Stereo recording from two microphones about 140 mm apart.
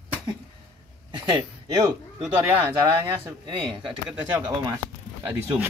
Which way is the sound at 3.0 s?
35° right (ahead or behind).